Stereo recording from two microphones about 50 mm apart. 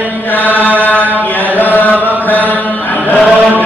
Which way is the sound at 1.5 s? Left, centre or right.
Left.